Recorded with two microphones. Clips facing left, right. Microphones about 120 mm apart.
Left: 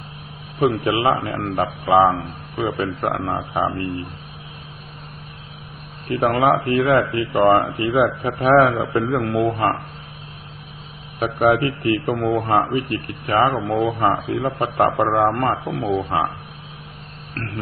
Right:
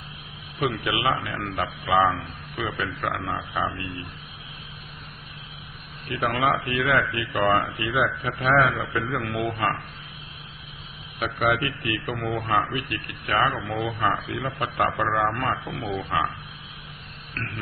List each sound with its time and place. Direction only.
0.6 s speech: 35° left (ahead or behind)
6.0 s speech: 30° left (ahead or behind)
11.1 s speech: 35° left (ahead or behind)
13.7 s speech: 30° left (ahead or behind)